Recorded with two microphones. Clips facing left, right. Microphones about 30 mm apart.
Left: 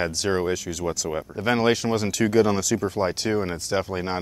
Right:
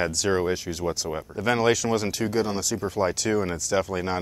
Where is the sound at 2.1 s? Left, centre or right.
Left.